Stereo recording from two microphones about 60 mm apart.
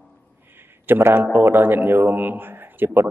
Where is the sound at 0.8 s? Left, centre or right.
Right.